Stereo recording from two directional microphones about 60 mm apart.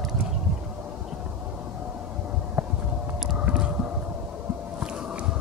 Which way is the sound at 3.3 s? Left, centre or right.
Centre.